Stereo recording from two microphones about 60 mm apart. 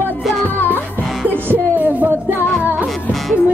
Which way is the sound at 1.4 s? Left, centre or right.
Right.